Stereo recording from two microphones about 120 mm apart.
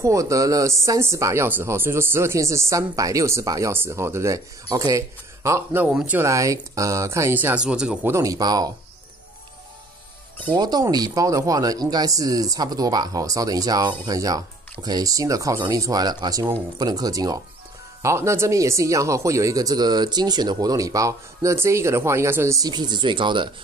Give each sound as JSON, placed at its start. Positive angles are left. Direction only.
{"t": 0.0, "sound": "speech", "side_deg": -25}
{"t": 5.9, "sound": "speech", "side_deg": -5}
{"t": 6.1, "sound": "speech", "side_deg": -25}
{"t": 8.1, "sound": "speech", "side_deg": -25}
{"t": 10.5, "sound": "speech", "side_deg": -35}